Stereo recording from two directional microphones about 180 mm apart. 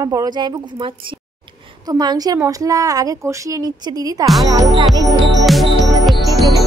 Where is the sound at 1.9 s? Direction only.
20° right (ahead or behind).